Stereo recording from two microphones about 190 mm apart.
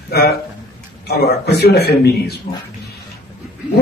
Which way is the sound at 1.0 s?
55° left (ahead or behind).